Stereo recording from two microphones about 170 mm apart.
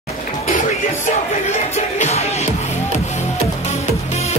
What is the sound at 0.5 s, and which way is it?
Music, 45° left (ahead or behind).